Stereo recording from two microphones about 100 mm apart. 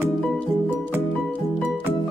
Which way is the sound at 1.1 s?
15° left (ahead or behind).